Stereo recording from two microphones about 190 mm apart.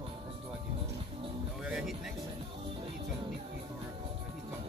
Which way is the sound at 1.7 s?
5° right (ahead or behind).